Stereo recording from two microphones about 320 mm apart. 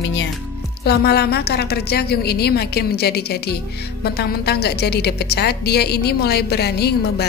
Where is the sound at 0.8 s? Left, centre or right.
Left.